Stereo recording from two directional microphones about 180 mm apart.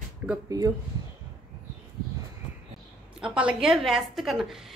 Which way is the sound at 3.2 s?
5° right (ahead or behind).